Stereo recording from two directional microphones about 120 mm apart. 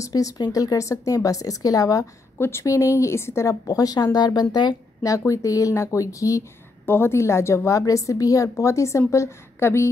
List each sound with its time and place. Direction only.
0.0 s a woman's voice: 30° left (ahead or behind)